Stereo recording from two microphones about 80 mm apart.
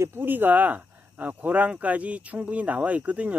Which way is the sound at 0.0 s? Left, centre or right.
Right.